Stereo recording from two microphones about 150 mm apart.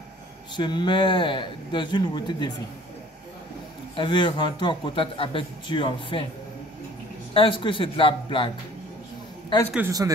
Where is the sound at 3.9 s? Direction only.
30° left (ahead or behind).